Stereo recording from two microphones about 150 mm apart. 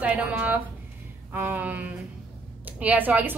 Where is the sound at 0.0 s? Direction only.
10° right (ahead or behind).